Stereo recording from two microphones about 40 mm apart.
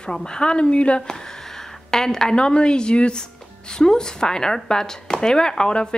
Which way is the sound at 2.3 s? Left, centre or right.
Left.